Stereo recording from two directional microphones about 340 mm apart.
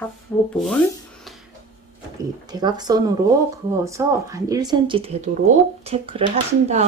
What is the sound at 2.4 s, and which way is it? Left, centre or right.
Speech, centre.